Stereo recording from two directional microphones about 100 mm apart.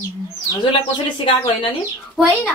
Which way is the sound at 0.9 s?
60° left (ahead or behind).